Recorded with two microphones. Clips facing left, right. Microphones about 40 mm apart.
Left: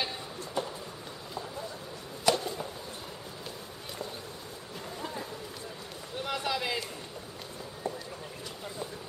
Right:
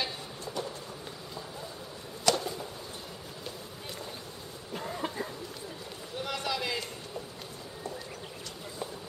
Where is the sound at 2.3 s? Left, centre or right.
Centre.